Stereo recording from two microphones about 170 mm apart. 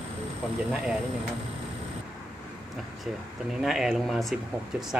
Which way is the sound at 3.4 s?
5° right (ahead or behind).